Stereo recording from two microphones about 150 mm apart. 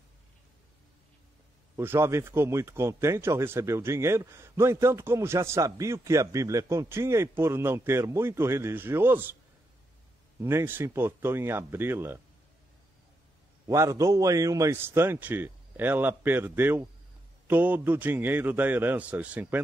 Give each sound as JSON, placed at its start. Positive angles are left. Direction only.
{"t": 1.8, "sound": "a man's voice", "side_deg": -15}
{"t": 10.4, "sound": "a man's voice", "side_deg": -15}
{"t": 13.7, "sound": "a man's voice", "side_deg": -20}